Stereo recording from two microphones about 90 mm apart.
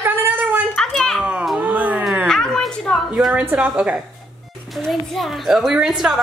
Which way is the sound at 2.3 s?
5° left (ahead or behind).